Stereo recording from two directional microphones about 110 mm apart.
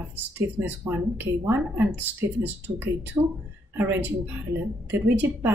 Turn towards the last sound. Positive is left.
turn(degrees=-20)  # may be behind; listen again after turning